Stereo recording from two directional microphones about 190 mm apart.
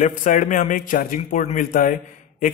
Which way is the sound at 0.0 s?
45° left (ahead or behind).